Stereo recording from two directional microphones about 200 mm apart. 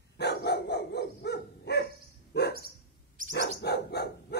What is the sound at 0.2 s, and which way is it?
Dog, 55° left (ahead or behind).